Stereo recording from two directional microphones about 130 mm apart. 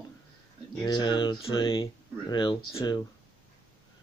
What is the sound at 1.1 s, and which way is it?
Speech, 40° left (ahead or behind).